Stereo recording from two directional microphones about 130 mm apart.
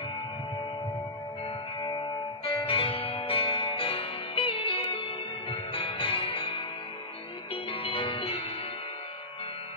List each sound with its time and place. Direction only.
2.4 s change ringing: 45° left (ahead or behind)
5.5 s music: 45° left (ahead or behind)